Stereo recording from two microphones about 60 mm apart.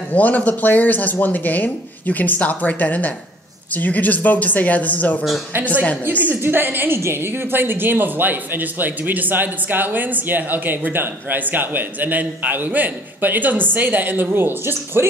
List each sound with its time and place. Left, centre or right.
0.1 s speech: left
6.4 s speech: right